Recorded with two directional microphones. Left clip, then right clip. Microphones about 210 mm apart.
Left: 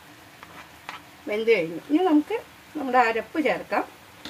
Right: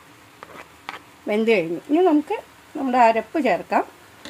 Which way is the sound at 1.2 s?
50° right (ahead or behind).